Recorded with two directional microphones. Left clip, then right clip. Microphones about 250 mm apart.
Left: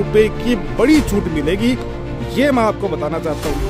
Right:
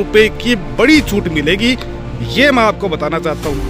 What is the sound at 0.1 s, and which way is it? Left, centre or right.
Speech, centre.